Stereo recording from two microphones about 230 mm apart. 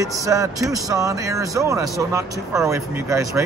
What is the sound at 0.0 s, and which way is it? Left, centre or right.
Speech, centre.